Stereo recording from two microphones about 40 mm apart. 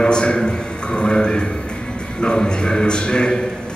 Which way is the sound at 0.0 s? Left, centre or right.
Left.